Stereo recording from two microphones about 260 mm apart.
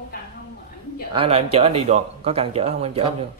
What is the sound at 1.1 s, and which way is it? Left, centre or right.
Speech, right.